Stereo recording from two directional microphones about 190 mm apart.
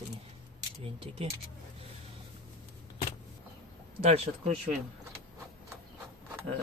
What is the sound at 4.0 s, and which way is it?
Speech, 35° right (ahead or behind).